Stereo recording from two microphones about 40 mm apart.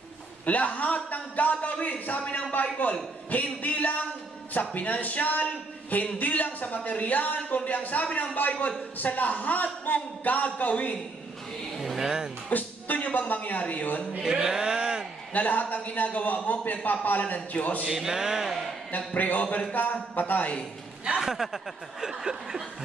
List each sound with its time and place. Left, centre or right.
0.5 s speech: left
11.8 s speech: centre
12.4 s speech: left
14.2 s speech: centre
15.3 s a man's voice: left
17.8 s a sound: centre
18.9 s a man's voice: left
21.2 s a sound: centre